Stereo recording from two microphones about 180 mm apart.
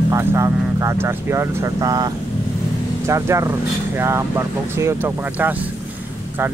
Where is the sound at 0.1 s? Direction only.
15° right (ahead or behind).